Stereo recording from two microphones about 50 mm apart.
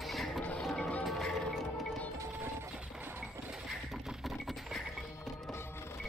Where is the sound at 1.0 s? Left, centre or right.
Centre.